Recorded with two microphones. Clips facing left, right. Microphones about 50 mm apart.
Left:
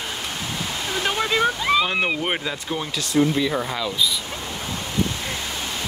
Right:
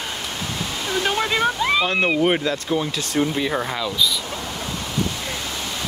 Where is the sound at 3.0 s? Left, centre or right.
Right.